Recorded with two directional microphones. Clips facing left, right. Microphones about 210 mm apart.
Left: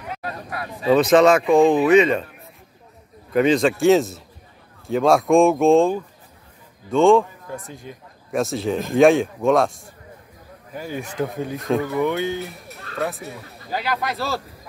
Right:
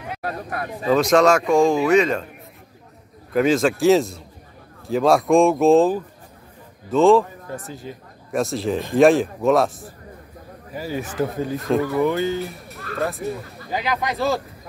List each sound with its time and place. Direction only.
0.9 s speech: centre (ahead or behind)
3.3 s a man's voice: centre (ahead or behind)
14.0 s speech: 15° right (ahead or behind)